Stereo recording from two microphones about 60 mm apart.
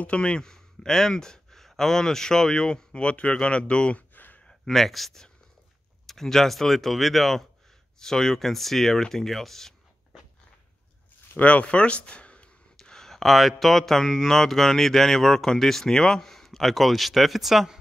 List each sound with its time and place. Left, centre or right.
0.0 s speech: centre
4.1 s a sound: left
4.5 s speech: centre
11.3 s speech: left
12.7 s speech: centre